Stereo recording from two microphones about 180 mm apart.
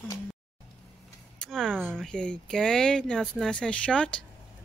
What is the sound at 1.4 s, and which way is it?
Speech, 5° left (ahead or behind).